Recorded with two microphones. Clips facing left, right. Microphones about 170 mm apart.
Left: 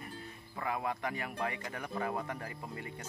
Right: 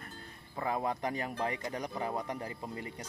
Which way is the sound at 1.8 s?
20° right (ahead or behind).